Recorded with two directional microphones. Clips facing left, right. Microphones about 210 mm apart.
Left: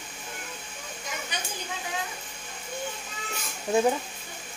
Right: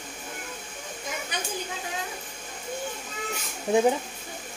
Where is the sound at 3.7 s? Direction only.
15° right (ahead or behind).